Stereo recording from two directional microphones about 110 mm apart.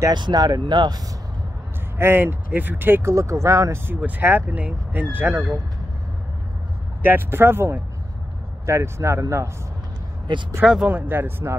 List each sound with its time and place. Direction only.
0.1 s speech: 40° right (ahead or behind)
2.0 s speech: 20° right (ahead or behind)
7.0 s speech: 20° right (ahead or behind)
10.3 s speech: 45° right (ahead or behind)
10.6 s speech: 5° right (ahead or behind)
10.9 s speech: 20° right (ahead or behind)